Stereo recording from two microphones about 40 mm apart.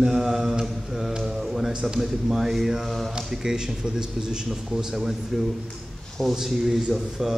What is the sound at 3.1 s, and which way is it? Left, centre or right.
Mantra, centre.